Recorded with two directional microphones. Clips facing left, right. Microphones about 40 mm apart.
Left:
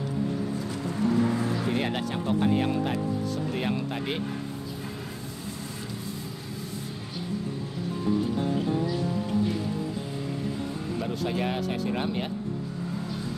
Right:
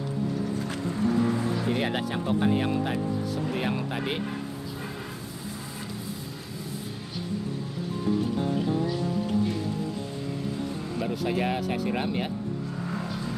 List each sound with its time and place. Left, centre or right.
1.7 s speech: centre
11.0 s speech: centre